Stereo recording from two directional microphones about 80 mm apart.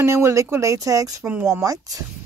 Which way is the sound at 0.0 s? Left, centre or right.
Right.